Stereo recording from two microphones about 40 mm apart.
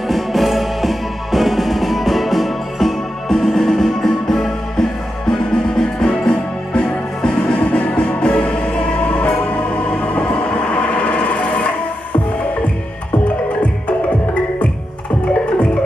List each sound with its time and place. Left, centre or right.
0.1 s music: centre
7.5 s music: left
10.7 s a sound: left
13.6 s music: left